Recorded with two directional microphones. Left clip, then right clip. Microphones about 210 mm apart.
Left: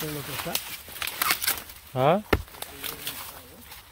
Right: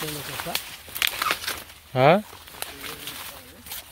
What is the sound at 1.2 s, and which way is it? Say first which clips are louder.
Crumpling: right 1 dB; 50° left (ahead or behind).